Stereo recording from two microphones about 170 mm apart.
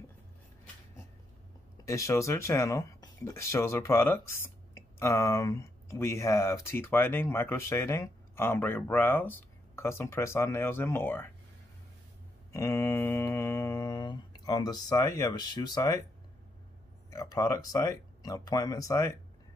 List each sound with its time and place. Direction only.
1.9 s speech: 20° left (ahead or behind)
12.5 s mantra: 15° left (ahead or behind)
17.1 s speech: 20° left (ahead or behind)